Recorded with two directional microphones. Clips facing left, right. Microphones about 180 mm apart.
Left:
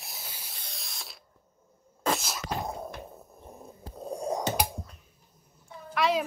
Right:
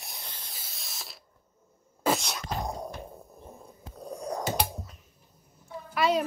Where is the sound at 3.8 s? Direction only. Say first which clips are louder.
Left 4 dB; 30° left (ahead or behind).